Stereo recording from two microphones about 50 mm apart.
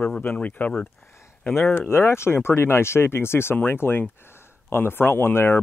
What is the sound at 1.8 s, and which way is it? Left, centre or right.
A man's voice, left.